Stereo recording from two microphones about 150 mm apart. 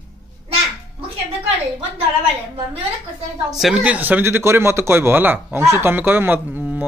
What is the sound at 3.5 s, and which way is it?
Speech, 5° right (ahead or behind).